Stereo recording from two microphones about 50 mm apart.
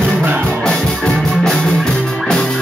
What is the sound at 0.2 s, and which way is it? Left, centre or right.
Music, right.